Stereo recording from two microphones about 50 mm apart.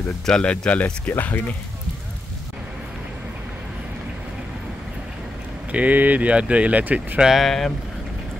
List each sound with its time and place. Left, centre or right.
0.4 s speech: left
1.1 s speech: left
5.7 s speech: right
7.3 s speech: centre